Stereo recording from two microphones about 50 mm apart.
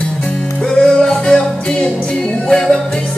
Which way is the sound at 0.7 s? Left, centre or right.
Centre.